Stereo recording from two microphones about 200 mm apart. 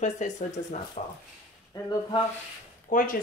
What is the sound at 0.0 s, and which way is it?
Speech, 35° left (ahead or behind).